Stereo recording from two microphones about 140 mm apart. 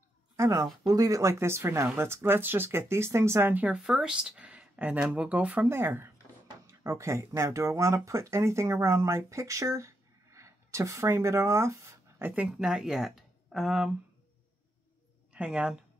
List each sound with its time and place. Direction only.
0.4 s speech: 25° right (ahead or behind); by 13.9 s 5° right (ahead or behind)
15.3 s speech: 5° right (ahead or behind)